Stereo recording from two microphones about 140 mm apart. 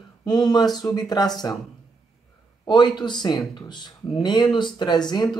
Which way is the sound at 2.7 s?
30° left (ahead or behind).